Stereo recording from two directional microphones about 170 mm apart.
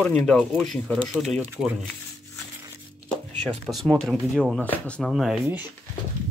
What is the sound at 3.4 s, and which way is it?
Speech, 5° left (ahead or behind).